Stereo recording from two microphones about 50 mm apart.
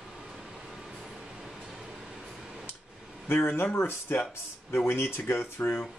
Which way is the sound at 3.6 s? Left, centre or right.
Left.